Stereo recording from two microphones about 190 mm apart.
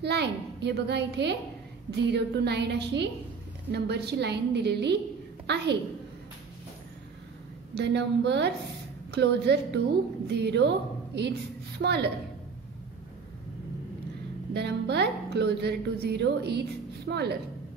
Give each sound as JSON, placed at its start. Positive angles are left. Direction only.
{"t": 0.0, "sound": "music", "side_deg": -60}
{"t": 7.7, "sound": "music", "side_deg": -65}
{"t": 14.5, "sound": "music", "side_deg": -60}